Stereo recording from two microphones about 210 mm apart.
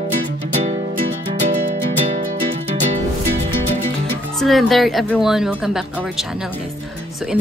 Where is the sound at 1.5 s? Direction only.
40° right (ahead or behind).